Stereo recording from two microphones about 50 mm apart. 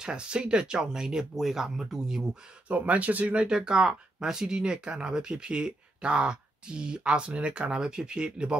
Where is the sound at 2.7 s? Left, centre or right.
Right.